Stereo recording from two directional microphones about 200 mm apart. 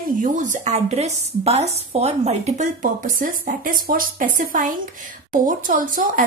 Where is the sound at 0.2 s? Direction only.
40° right (ahead or behind).